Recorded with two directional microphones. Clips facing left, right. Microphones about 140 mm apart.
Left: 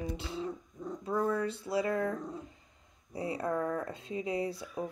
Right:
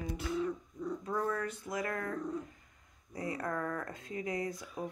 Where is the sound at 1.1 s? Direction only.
10° left (ahead or behind).